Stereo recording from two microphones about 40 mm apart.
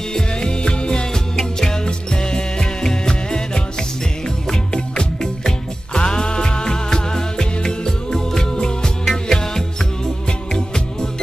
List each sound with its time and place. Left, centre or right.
0.1 s music: left
4.7 s music: left